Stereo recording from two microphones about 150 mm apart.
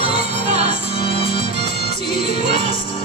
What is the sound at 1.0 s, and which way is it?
Music, 40° left (ahead or behind).